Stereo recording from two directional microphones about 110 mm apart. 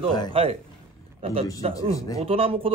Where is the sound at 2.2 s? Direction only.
60° right (ahead or behind).